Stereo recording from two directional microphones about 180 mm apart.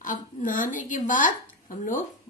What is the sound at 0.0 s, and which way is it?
Speech, 45° left (ahead or behind).